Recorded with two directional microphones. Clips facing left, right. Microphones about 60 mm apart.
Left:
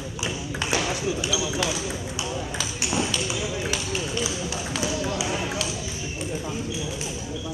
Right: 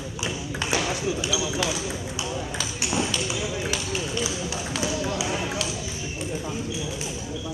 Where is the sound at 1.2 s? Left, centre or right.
Centre.